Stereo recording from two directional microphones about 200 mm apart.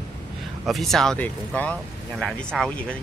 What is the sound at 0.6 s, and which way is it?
Speech, centre (ahead or behind).